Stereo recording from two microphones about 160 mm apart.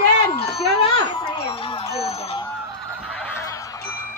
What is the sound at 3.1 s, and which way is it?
Fowl, 10° left (ahead or behind).